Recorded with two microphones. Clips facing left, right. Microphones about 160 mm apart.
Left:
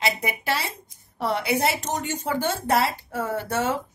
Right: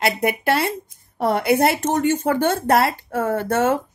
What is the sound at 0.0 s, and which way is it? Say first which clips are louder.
A woman's voice: right 7 dB; 55° right (ahead or behind).